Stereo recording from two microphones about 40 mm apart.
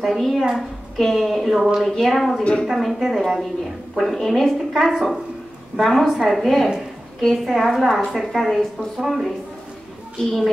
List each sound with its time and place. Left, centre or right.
0.2 s a woman's voice: centre
7.5 s a woman's voice: centre